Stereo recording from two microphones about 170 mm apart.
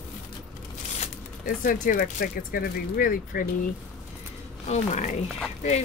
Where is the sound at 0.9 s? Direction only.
50° left (ahead or behind).